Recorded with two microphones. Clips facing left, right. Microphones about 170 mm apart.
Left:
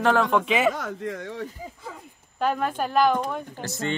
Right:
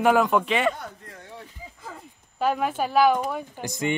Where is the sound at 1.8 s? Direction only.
5° right (ahead or behind).